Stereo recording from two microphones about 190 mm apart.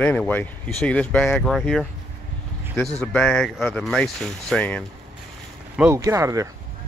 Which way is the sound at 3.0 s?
5° left (ahead or behind).